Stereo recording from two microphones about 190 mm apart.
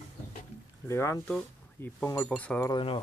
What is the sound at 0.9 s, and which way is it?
Speech, 15° left (ahead or behind).